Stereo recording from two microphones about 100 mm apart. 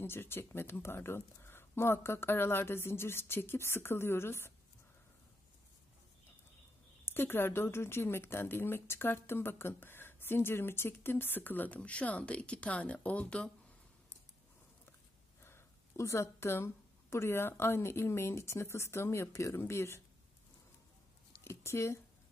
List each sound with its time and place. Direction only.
0.0 s speech: 25° left (ahead or behind)
7.1 s speech: 20° left (ahead or behind)
15.4 s speech: 30° left (ahead or behind)
21.5 s speech: 25° left (ahead or behind)